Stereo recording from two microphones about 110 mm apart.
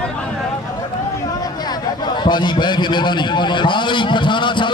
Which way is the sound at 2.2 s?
40° left (ahead or behind).